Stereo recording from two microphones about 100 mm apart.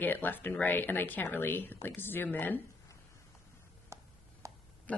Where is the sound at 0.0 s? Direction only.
20° left (ahead or behind).